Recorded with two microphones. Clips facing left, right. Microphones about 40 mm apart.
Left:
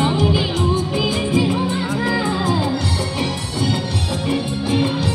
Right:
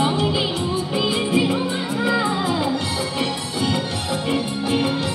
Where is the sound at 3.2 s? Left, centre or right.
Centre.